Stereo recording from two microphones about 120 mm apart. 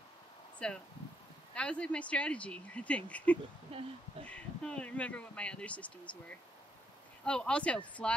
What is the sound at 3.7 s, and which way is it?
Speech, 55° right (ahead or behind).